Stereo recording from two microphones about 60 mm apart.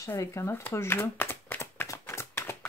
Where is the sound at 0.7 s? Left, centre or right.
Left.